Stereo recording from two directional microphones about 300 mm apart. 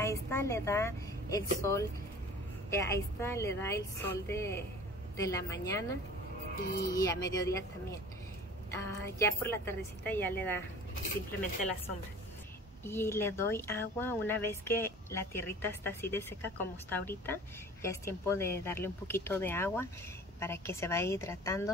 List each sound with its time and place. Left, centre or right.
0.0 s a woman's voice: centre
6.5 s speech: left
6.9 s speech: centre
12.8 s speech: centre